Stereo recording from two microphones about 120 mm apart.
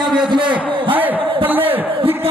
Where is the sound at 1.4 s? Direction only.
15° right (ahead or behind).